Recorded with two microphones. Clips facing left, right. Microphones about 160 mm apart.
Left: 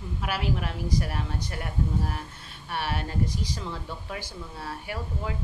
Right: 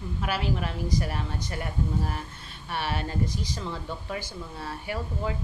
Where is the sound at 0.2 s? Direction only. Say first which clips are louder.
Right 1 dB; 5° left (ahead or behind).